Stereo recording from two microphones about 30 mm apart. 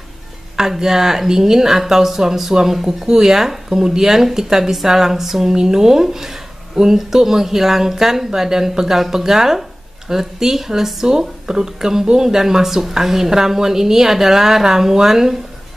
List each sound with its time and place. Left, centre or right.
0.6 s a woman's voice: centre